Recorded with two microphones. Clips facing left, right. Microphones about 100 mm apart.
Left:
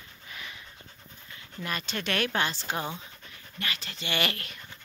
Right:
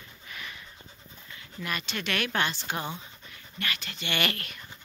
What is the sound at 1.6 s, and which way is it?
Speech, 30° left (ahead or behind).